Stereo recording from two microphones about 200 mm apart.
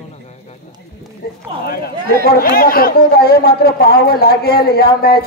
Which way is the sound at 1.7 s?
50° left (ahead or behind).